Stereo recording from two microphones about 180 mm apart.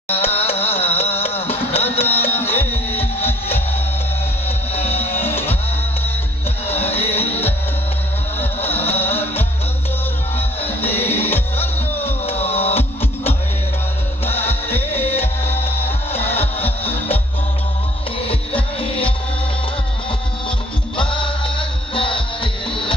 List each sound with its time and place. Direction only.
0.1 s music: 35° left (ahead or behind)
2.0 s music: 10° left (ahead or behind)
2.5 s music: 35° left (ahead or behind)
4.7 s music: 35° left (ahead or behind)
6.7 s music: 35° left (ahead or behind)
8.9 s music: 10° left (ahead or behind)
11.1 s music: 10° left (ahead or behind)
12.3 s music: 35° left (ahead or behind)
14.2 s music: 10° left (ahead or behind)
15.0 s music: 35° left (ahead or behind)
18.3 s music: 30° left (ahead or behind)
20.4 s music: 25° left (ahead or behind)